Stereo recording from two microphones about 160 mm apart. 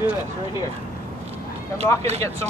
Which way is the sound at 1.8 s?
40° right (ahead or behind).